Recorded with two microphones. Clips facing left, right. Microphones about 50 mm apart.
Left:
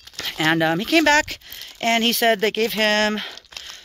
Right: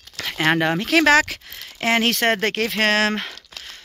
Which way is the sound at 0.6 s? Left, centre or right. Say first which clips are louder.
Left 1 dB; right.